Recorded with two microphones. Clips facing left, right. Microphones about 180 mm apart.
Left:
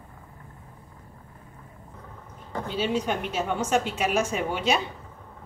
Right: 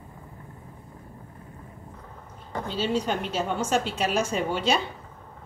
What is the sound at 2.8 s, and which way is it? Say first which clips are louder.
Speech: even; 10° left (ahead or behind).